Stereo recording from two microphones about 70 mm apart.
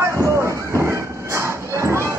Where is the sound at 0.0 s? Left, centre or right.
Right.